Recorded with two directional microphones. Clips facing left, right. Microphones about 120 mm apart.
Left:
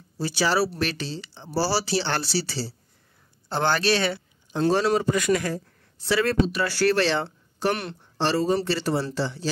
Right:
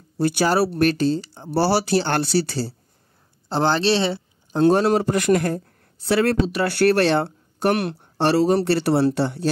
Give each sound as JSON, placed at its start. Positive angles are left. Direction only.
{"t": 0.2, "sound": "speech", "side_deg": -55}
{"t": 1.5, "sound": "speech", "side_deg": -60}
{"t": 3.4, "sound": "speech", "side_deg": -30}
{"t": 4.6, "sound": "speech", "side_deg": -55}